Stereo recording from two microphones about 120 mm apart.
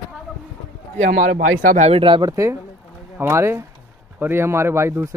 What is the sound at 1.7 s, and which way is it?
Speech, 75° right (ahead or behind).